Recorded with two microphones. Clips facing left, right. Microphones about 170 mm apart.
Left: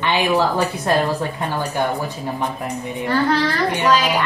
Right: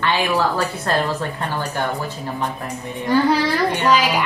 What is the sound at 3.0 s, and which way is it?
A woman's voice, 10° right (ahead or behind).